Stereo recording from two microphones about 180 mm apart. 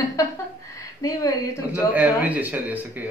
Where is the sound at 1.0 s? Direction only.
20° left (ahead or behind).